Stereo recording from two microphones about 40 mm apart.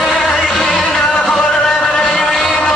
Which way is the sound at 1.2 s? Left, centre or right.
Centre.